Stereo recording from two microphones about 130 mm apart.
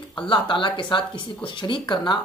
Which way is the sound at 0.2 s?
40° left (ahead or behind).